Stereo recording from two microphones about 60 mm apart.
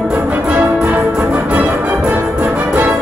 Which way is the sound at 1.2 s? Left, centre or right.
Right.